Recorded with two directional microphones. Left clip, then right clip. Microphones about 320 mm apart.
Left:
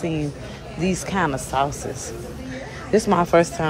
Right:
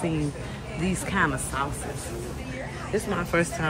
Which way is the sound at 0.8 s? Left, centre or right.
Centre.